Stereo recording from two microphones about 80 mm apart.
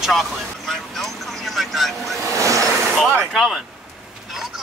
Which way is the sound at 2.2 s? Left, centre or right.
Right.